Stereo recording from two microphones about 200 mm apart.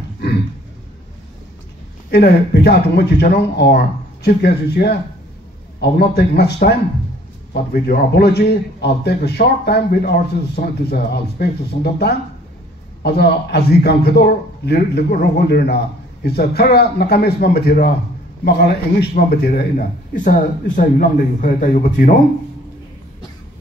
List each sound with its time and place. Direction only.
2.0 s a man's voice: 55° left (ahead or behind)